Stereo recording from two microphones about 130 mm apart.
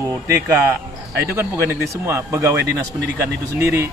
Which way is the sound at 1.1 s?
20° right (ahead or behind).